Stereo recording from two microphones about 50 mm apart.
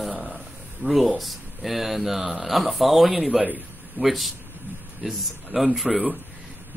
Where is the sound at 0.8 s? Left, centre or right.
Right.